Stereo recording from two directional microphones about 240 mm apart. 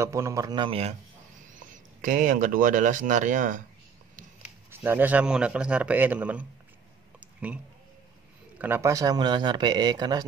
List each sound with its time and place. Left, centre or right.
0.0 s a man's voice: centre; by 3.6 s right
4.6 s a man's voice: centre